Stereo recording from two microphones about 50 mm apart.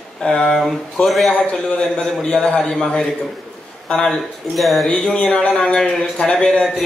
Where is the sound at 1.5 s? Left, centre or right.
Centre.